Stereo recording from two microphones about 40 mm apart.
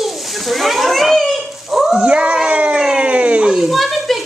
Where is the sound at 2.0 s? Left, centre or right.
Right.